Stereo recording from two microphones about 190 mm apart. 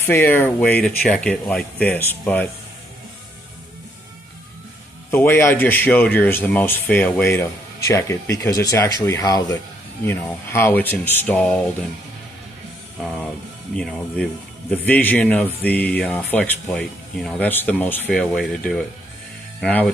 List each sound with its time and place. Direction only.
0.0 s speech: 10° left (ahead or behind)
5.1 s speech: 10° left (ahead or behind)
13.7 s speech: 5° left (ahead or behind)